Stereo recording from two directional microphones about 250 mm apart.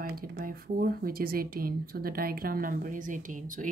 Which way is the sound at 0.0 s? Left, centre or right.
Right.